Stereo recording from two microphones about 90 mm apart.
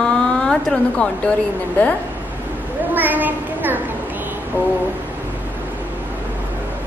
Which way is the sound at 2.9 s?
20° right (ahead or behind).